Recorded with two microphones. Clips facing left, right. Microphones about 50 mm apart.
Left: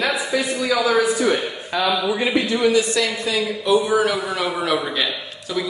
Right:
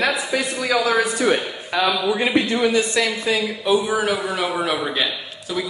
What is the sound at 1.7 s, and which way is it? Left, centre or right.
Speech, right.